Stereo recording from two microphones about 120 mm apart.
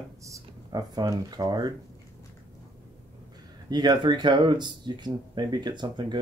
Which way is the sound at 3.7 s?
40° right (ahead or behind).